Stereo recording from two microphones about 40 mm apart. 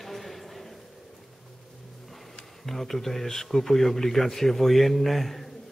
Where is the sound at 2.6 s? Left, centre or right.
Centre.